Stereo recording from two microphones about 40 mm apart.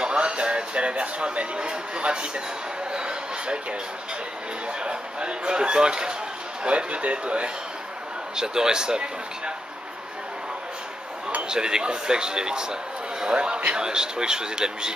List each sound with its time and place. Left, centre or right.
0.0 s speech: right
2.9 s a sound: right
4.7 s speech: right
8.4 s speech: centre
11.4 s speech: centre